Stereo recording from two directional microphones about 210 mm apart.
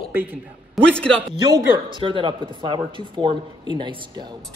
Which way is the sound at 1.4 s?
20° right (ahead or behind).